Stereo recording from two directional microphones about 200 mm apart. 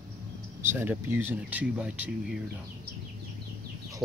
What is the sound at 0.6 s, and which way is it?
Speech, 10° right (ahead or behind).